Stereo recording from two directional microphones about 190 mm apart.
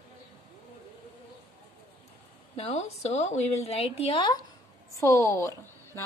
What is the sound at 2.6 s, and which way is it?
A woman's voice, 35° left (ahead or behind).